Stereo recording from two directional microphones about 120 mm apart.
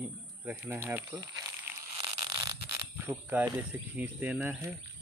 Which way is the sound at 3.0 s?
15° right (ahead or behind).